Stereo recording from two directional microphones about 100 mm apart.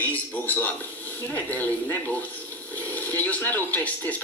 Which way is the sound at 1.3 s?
15° left (ahead or behind).